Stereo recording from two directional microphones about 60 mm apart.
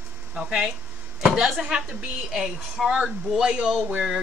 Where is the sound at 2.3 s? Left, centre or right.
Centre.